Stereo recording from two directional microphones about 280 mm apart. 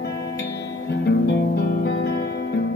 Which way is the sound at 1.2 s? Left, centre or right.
Left.